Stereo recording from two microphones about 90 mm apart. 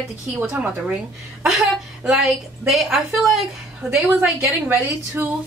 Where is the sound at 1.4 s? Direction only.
5° right (ahead or behind).